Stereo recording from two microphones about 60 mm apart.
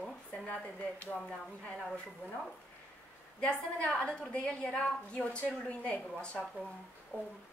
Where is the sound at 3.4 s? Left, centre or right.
Left.